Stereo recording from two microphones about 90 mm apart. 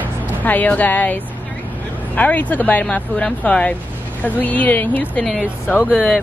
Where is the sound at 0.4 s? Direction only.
20° left (ahead or behind).